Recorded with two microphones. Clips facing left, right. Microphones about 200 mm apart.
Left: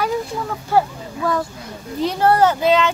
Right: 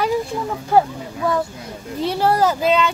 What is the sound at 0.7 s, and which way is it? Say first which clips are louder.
Speech: right 2 dB; 20° right (ahead or behind).